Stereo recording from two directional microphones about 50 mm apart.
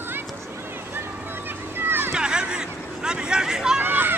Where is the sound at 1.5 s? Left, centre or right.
Right.